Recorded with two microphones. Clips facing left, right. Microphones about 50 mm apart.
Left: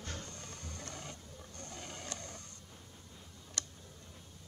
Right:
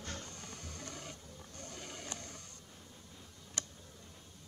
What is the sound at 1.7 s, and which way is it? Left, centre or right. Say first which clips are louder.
Boat: left 1 dB; centre.